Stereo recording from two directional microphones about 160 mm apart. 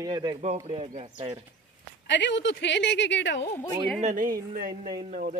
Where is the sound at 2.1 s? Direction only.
90° left.